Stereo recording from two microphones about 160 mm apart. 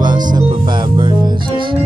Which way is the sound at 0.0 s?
25° right (ahead or behind).